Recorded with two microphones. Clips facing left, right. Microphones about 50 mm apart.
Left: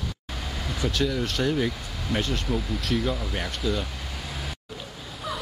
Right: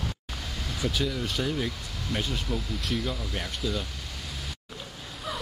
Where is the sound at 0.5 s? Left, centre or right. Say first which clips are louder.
Left 4 dB; left.